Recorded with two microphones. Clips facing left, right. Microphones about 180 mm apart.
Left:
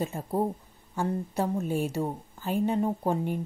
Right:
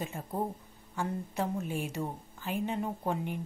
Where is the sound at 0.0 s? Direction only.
35° left (ahead or behind).